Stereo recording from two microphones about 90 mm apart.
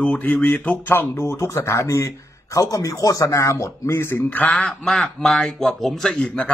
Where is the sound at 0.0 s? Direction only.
15° left (ahead or behind).